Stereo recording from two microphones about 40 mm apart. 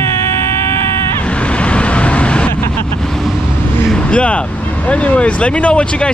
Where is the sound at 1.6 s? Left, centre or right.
Left.